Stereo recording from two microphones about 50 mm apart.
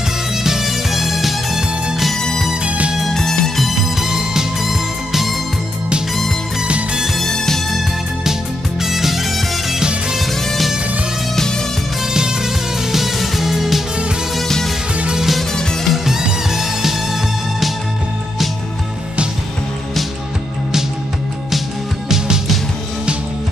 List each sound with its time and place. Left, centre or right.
0.4 s music: centre
2.1 s music: centre
2.6 s music: right
3.0 s music: centre
6.7 s music: centre
7.2 s music: centre
8.8 s music: centre
11.3 s music: centre
12.1 s music: centre
14.3 s music: centre
15.1 s music: centre